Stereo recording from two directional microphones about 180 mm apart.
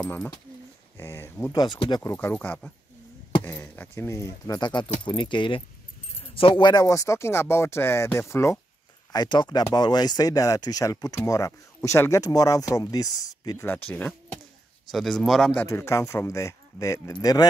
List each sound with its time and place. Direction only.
0.0 s speech: 10° left (ahead or behind)
2.1 s speech: 10° left (ahead or behind)
15.6 s speech: 15° left (ahead or behind)